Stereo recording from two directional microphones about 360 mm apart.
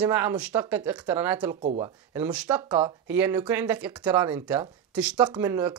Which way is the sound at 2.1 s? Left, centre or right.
Centre.